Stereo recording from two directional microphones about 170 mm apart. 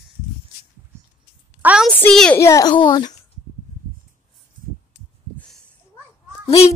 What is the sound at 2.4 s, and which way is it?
Speech, 20° left (ahead or behind).